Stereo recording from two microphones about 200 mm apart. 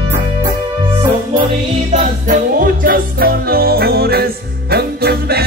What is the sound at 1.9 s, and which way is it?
Music, 40° right (ahead or behind).